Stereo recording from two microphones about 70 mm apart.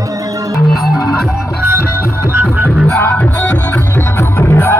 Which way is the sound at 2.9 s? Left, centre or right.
Left.